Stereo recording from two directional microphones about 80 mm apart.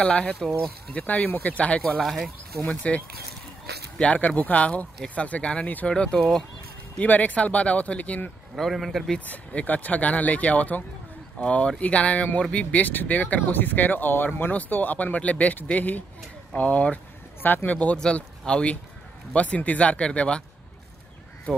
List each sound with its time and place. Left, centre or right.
0.0 s speech: centre
1.8 s a man's voice: centre
2.6 s speech: centre
4.0 s speech: centre
7.0 s speech: centre
8.5 s a man's voice: centre
9.2 s speech: centre